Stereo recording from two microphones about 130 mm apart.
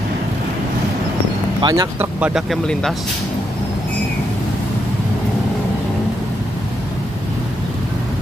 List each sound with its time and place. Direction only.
1.6 s speech: 30° right (ahead or behind)
2.0 s speech: 10° right (ahead or behind)
2.5 s speech: 5° left (ahead or behind)